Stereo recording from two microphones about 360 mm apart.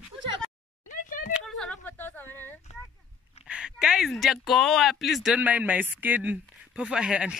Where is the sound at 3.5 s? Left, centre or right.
Centre.